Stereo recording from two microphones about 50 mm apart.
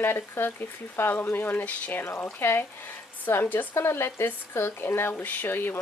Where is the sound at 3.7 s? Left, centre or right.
Left.